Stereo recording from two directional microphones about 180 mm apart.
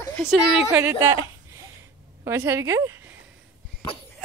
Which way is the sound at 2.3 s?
15° right (ahead or behind).